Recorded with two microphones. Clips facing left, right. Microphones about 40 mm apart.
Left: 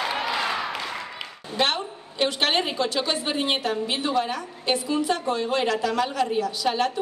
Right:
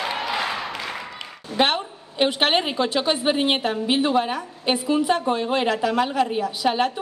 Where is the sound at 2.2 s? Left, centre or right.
Centre.